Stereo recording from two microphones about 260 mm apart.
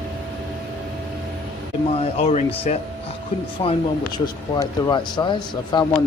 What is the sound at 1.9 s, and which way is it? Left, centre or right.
Speech, left.